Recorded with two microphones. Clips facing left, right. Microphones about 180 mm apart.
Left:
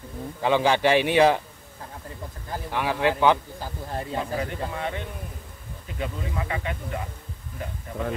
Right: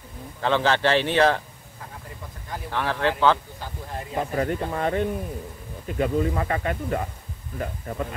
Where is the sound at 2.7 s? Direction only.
10° left (ahead or behind).